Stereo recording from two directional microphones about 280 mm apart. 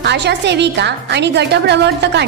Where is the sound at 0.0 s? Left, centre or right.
Right.